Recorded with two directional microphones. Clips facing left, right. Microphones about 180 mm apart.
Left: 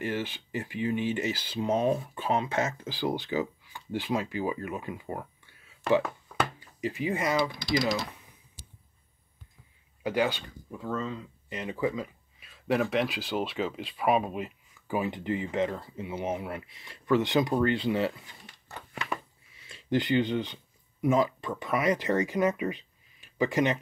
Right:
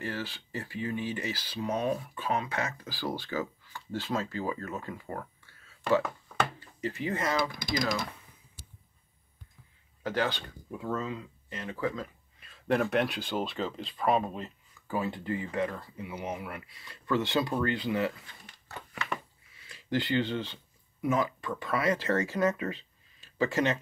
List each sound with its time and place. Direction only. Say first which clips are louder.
0.0 s speech: left 4 dB; 20° left (ahead or behind)
7.6 s speech: left 3 dB; 45° right (ahead or behind)
10.0 s speech: left 3 dB; 10° left (ahead or behind)
10.7 s speech: even; 5° right (ahead or behind)
11.4 s speech: left 3 dB; 15° left (ahead or behind)